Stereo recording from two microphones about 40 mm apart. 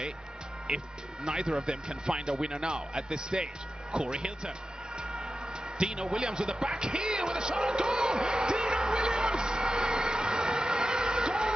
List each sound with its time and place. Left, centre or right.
1.2 s speech: right
5.8 s a man's voice: centre
7.5 s a sound: centre